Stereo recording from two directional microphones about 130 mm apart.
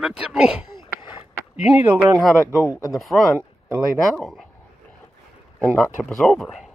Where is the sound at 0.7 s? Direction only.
40° left (ahead or behind).